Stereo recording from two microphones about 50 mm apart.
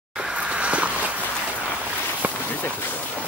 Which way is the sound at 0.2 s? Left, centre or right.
Centre.